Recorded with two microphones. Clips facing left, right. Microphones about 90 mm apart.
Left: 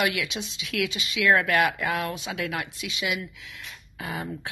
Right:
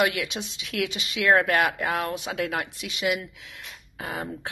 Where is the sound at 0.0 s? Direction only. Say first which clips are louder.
Right 2 dB; 35° right (ahead or behind).